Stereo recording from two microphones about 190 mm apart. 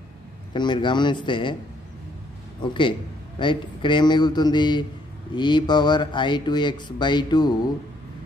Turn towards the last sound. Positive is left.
turn(degrees=25)  # may be behind; listen again after turning